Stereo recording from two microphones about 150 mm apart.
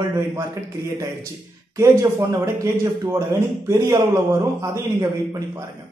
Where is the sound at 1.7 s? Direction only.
20° right (ahead or behind).